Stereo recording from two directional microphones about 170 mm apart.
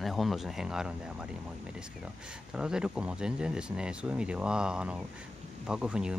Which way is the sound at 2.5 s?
5° right (ahead or behind).